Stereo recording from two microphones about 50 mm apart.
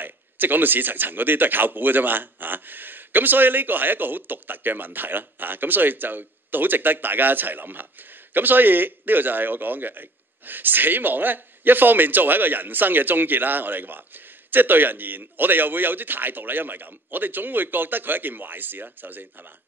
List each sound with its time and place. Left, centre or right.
0.0 s a man's voice: right